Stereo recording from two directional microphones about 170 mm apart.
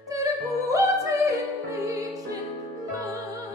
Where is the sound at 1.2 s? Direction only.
20° right (ahead or behind).